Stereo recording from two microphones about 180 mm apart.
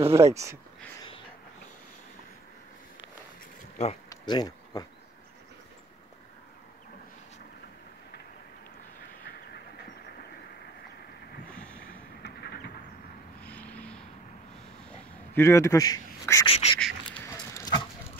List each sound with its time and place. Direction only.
0.0 s speech: 15° right (ahead or behind)
3.7 s speech: 35° left (ahead or behind)
4.1 s a sound: 20° left (ahead or behind)
11.5 s vehicle: 5° left (ahead or behind)
12.2 s vehicle: 65° left (ahead or behind)
13.4 s vehicle: 10° left (ahead or behind)
14.9 s duck: 15° left (ahead or behind)
16.4 s a sound: 30° left (ahead or behind)
16.8 s duck: 10° left (ahead or behind)